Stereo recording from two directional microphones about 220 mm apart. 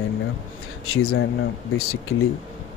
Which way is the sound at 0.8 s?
75° left (ahead or behind).